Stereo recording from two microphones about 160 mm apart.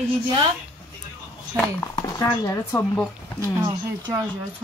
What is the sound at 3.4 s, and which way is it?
Speech, 20° right (ahead or behind).